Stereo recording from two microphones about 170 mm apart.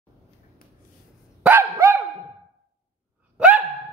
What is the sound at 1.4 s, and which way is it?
Dog, 10° right (ahead or behind).